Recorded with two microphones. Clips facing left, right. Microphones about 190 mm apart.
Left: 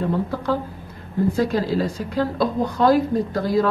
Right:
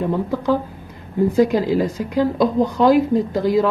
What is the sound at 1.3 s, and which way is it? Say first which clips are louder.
Speech: right 6 dB; 15° right (ahead or behind).